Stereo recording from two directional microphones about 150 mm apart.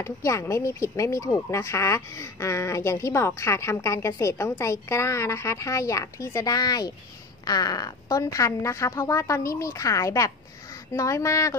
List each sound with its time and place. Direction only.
0.0 s speech: 20° left (ahead or behind)